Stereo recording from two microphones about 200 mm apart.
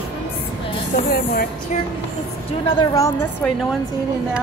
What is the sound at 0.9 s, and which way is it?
Spray, 45° left (ahead or behind).